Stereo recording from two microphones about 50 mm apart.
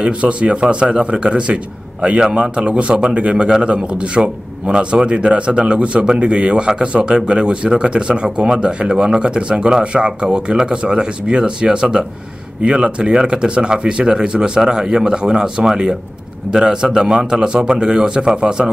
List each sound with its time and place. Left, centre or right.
0.0 s speech: right